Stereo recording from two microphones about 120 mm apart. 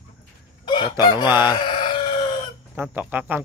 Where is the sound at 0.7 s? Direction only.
40° left (ahead or behind).